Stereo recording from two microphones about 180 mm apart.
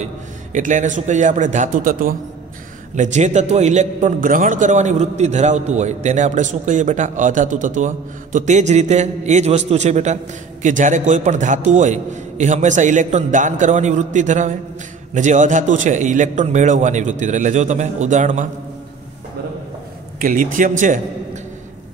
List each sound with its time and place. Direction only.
0.0 s a man's voice: 45° right (ahead or behind)
3.0 s a man's voice: 40° right (ahead or behind)
20.2 s a man's voice: 50° right (ahead or behind)